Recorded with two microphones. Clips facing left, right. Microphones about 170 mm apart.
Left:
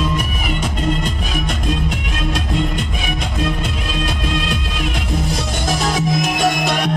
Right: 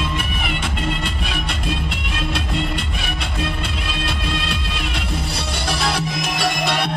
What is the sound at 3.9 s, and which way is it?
Music, 45° left (ahead or behind).